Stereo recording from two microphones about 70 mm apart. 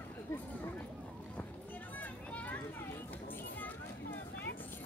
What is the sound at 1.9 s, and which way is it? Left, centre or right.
Children playing, left.